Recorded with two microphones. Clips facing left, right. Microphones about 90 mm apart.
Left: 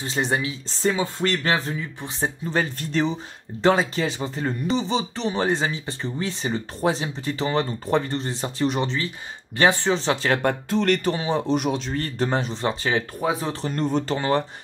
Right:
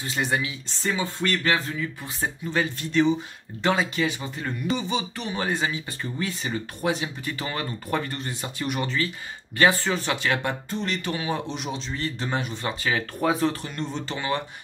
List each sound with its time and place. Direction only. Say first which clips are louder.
0.0 s speech: left 2 dB; 30° left (ahead or behind)
10.7 s music: left 8 dB; 75° left (ahead or behind)
11.1 s speech: left 5 dB; 30° left (ahead or behind)
11.5 s a man's voice: left 8 dB; 50° left (ahead or behind)
12.4 s speech: left 4 dB; 30° left (ahead or behind)
13.2 s speech: right 2 dB; 10° left (ahead or behind)
13.7 s speech: left 8 dB; 45° left (ahead or behind)